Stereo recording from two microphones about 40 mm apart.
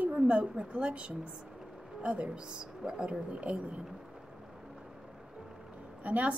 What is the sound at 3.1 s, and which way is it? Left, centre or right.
Speech, right.